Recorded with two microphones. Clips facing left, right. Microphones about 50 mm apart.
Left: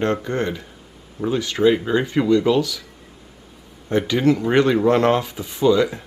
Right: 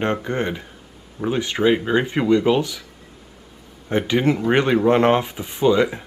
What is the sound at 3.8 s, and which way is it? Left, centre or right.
Speech, right.